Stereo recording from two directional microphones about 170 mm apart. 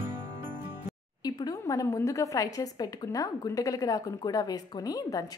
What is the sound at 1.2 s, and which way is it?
A woman's voice, 20° left (ahead or behind).